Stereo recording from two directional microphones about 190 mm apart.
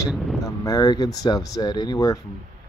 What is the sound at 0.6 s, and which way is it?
Speech, 20° left (ahead or behind).